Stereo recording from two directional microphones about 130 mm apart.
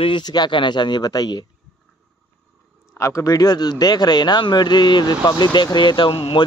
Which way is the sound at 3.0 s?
25° left (ahead or behind).